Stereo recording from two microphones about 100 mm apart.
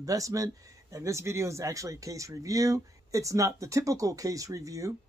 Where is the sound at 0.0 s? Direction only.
35° right (ahead or behind).